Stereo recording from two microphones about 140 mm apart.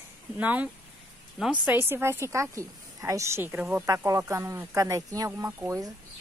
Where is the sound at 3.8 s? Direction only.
25° right (ahead or behind).